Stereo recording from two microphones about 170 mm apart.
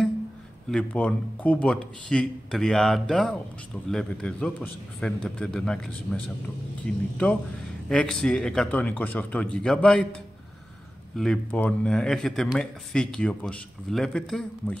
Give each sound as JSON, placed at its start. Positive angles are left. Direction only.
{"t": 0.7, "sound": "speech", "side_deg": 5}
{"t": 6.9, "sound": "speech", "side_deg": -50}
{"t": 7.9, "sound": "speech", "side_deg": 5}